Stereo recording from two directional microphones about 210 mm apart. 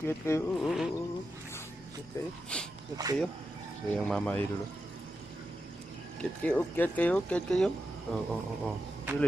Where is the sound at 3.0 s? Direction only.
20° right (ahead or behind).